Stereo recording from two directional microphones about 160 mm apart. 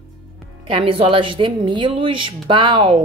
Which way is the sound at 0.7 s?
35° right (ahead or behind).